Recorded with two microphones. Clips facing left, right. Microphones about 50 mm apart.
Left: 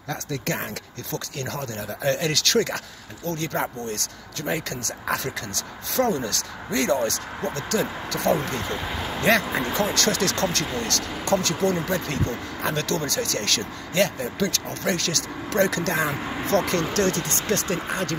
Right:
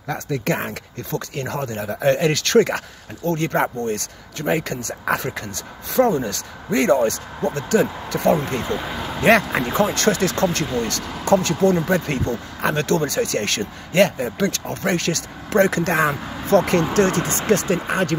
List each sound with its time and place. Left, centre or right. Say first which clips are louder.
0.1 s speech: right 5 dB; right
8.6 s speech: right 3 dB; centre
9.2 s speech: right 5 dB; right